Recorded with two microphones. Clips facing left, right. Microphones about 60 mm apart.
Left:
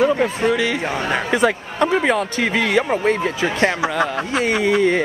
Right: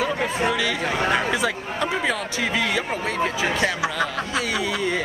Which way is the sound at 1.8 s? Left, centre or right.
Left.